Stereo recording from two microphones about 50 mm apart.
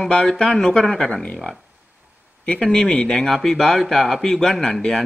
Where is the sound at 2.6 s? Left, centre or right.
Centre.